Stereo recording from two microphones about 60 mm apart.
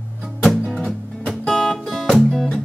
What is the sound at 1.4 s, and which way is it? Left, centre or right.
Guitar, centre.